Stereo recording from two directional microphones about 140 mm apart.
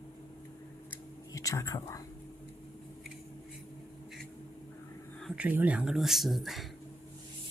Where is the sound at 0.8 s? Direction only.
25° left (ahead or behind).